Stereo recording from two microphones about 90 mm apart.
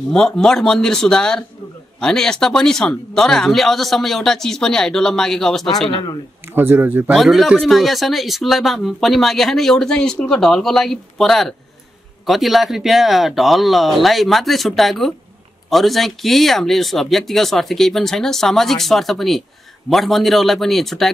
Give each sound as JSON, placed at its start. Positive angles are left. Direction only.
{"t": 0.1, "sound": "speech", "side_deg": 5}
{"t": 6.5, "sound": "speech", "side_deg": -25}
{"t": 7.2, "sound": "speech", "side_deg": 0}